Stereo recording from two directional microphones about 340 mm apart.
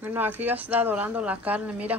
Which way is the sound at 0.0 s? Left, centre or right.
Centre.